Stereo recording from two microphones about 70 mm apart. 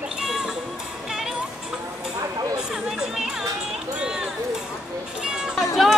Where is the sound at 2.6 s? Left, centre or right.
Centre.